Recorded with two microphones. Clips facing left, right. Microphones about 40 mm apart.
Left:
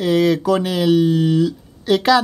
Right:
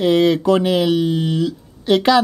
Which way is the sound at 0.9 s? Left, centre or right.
Centre.